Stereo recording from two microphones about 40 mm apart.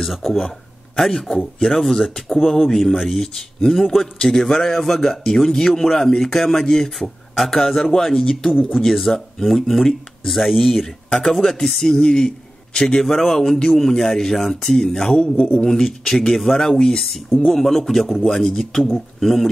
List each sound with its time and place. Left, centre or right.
0.0 s speech: centre
8.9 s speech: centre
15.1 s a man's voice: left
15.6 s speech: centre
17.5 s speech: centre